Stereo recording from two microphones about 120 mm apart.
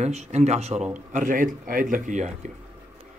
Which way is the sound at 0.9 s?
90° right.